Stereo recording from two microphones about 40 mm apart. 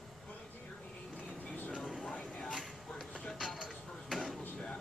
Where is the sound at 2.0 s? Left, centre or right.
Left.